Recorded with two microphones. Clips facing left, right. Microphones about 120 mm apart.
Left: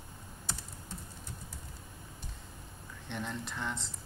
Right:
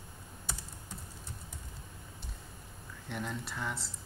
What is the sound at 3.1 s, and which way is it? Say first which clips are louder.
Speech: even; 5° right (ahead or behind).